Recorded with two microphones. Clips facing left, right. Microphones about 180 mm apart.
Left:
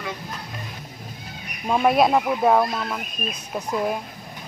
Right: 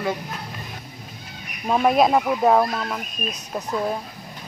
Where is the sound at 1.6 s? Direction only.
Centre (ahead or behind).